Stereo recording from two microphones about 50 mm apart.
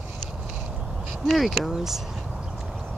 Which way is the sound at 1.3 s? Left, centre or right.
Centre.